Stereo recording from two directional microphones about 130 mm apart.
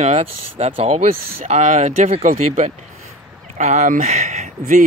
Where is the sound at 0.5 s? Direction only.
45° right (ahead or behind); by 2.4 s 85° right.